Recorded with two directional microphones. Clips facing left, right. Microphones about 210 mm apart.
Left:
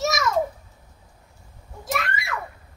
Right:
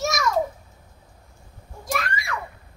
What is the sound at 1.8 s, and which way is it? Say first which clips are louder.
Screaming: even; 5° left (ahead or behind).